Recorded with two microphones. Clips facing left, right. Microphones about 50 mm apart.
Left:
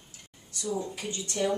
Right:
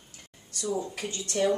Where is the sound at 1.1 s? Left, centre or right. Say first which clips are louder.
Right 3 dB; right.